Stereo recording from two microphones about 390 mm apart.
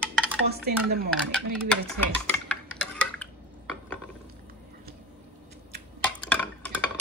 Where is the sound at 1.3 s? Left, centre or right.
Centre.